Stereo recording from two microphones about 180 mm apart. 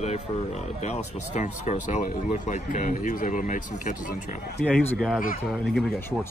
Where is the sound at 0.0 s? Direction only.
35° left (ahead or behind).